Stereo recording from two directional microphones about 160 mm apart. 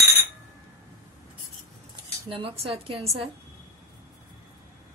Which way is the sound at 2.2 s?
35° right (ahead or behind).